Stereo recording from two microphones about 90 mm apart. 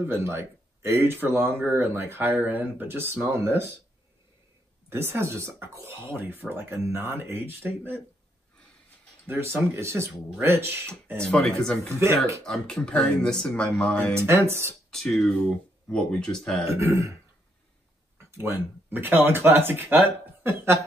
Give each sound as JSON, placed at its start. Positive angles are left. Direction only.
{"t": 0.0, "sound": "speech", "side_deg": -30}
{"t": 4.8, "sound": "speech", "side_deg": -30}
{"t": 9.3, "sound": "speech", "side_deg": -25}
{"t": 11.1, "sound": "speech", "side_deg": 10}
{"t": 14.1, "sound": "speech", "side_deg": -30}
{"t": 14.9, "sound": "speech", "side_deg": 5}
{"t": 16.7, "sound": "a man's voice", "side_deg": -35}
{"t": 18.1, "sound": "speech", "side_deg": -25}